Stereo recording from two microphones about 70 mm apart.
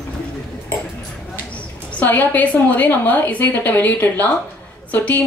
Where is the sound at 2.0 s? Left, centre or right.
Left.